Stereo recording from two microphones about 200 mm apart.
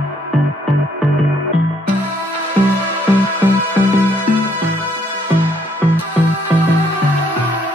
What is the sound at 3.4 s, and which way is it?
Music, 10° right (ahead or behind).